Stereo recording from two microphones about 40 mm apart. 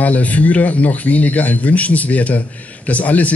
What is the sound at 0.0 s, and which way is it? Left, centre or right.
A man's voice, left.